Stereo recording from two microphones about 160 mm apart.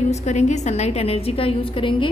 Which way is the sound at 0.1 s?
45° left (ahead or behind).